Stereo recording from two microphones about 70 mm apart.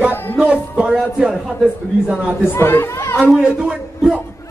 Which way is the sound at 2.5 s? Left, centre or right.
Left.